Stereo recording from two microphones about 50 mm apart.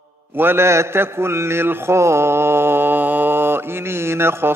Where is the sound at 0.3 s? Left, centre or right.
Right.